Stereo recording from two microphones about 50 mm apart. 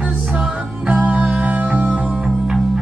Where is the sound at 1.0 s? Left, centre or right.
Right.